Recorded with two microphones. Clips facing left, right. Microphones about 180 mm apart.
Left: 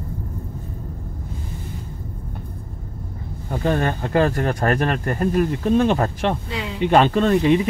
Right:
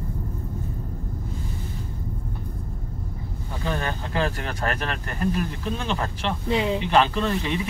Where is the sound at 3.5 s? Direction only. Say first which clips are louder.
Left 8 dB; 50° left (ahead or behind).